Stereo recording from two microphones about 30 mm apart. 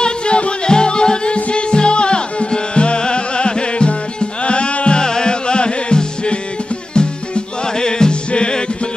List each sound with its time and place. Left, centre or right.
0.0 s music: left
4.9 s music: left